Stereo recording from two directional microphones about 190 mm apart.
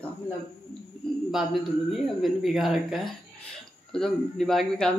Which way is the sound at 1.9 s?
Centre (ahead or behind).